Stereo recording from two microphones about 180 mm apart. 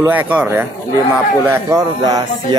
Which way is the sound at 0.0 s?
10° right (ahead or behind).